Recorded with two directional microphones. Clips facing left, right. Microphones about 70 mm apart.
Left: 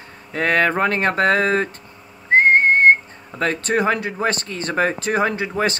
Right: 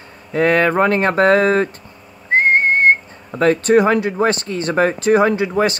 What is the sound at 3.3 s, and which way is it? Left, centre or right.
Speech, right.